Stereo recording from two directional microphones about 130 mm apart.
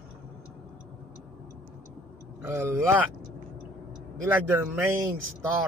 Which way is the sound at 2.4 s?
20° right (ahead or behind).